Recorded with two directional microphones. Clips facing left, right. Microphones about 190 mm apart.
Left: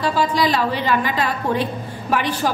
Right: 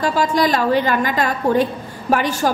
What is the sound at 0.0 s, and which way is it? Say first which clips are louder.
A woman's voice: right 2 dB; 45° right (ahead or behind).